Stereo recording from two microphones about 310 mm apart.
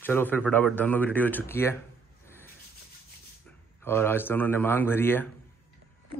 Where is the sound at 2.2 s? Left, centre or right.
Centre.